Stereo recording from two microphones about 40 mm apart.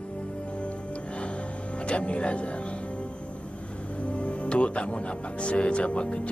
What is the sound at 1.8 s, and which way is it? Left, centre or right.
Speech, left.